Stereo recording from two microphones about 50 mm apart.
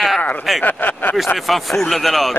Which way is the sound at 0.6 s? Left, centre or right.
Left.